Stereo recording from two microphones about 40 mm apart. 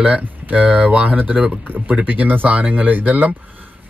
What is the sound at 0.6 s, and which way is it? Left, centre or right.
Speech, right.